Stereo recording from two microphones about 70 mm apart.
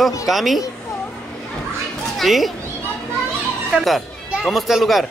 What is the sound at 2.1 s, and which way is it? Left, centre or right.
Speech, centre.